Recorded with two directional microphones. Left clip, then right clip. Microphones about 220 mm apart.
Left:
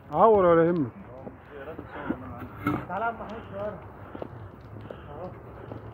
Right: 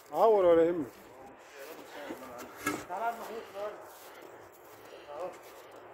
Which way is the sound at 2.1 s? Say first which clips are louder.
Left 11 dB; 25° left (ahead or behind).